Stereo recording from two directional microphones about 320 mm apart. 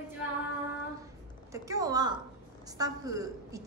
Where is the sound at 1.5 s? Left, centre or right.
Centre.